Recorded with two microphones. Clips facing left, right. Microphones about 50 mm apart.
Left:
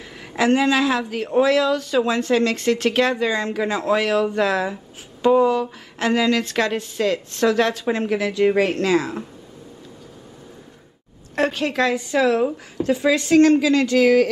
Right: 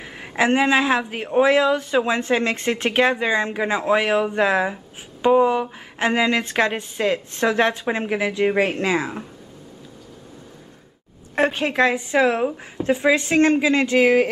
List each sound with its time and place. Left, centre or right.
0.0 s a woman's voice: right
11.3 s a woman's voice: right